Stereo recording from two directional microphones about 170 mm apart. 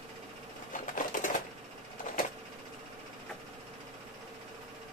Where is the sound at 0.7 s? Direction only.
50° left (ahead or behind).